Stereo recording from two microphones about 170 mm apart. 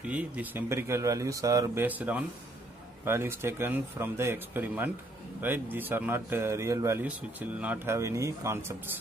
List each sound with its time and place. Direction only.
0.0 s speech: 10° right (ahead or behind)
1.9 s speech: 10° right (ahead or behind)